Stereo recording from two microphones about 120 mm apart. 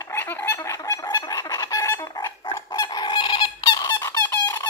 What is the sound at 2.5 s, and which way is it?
Goose, 40° left (ahead or behind).